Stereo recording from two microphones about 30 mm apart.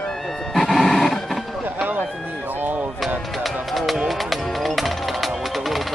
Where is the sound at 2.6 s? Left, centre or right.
Right.